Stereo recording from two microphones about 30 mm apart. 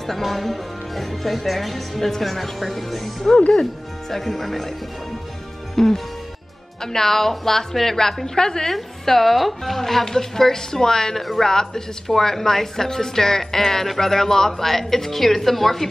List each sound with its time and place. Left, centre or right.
0.0 s speech: centre
5.8 s a woman's voice: centre
8.7 s a woman's voice: centre
11.1 s a woman's voice: centre
11.4 s a woman's voice: centre